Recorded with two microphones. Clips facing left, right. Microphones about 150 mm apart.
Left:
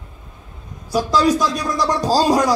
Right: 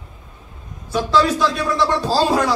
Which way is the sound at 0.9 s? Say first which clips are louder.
Left 1 dB; 40° left (ahead or behind).